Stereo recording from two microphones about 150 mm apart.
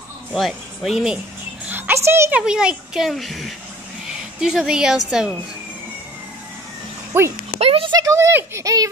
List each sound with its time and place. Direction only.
0.3 s speech: centre (ahead or behind)
1.7 s music: 15° right (ahead or behind)
2.4 s speech: 5° right (ahead or behind)
7.1 s a child's voice: 15° right (ahead or behind)
7.6 s speech: 40° right (ahead or behind)
7.9 s speech: 20° right (ahead or behind)